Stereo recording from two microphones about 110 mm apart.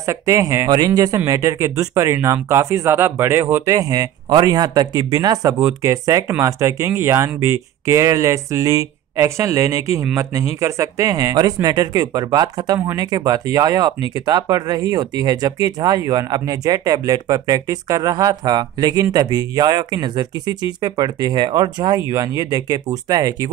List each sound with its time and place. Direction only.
0.0 s speech: 30° right (ahead or behind)